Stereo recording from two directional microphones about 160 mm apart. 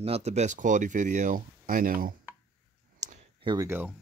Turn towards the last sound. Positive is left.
turn(degrees=-10)  # may be behind; listen again after turning